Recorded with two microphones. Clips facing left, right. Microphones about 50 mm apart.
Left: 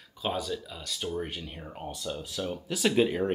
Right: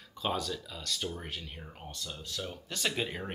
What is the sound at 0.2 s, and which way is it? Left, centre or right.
Speech, centre.